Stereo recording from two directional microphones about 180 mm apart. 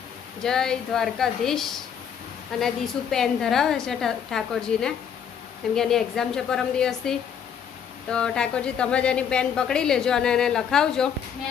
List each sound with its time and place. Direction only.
0.4 s a woman's voice: 5° left (ahead or behind)